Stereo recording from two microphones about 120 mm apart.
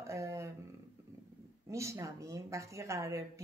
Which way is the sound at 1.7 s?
25° right (ahead or behind).